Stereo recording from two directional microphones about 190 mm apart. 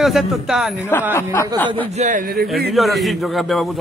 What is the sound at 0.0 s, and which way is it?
Speech, centre (ahead or behind).